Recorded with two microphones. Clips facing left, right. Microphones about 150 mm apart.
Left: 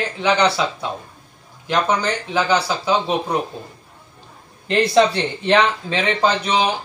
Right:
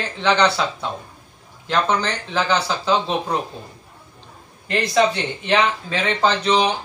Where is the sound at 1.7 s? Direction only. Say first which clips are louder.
Left 1 dB; 10° left (ahead or behind).